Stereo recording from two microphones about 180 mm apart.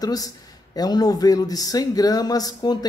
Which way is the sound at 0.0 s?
20° left (ahead or behind).